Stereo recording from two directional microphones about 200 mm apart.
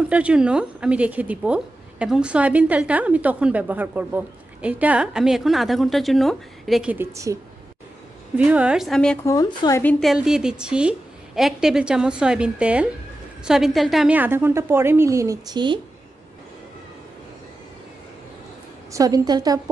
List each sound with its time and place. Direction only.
0.1 s a woman's voice: 5° right (ahead or behind)
8.4 s a woman's voice: 5° right (ahead or behind)
9.2 s a woman's voice: 20° left (ahead or behind); by 15.8 s 20° right (ahead or behind)
18.9 s a woman's voice: 15° right (ahead or behind)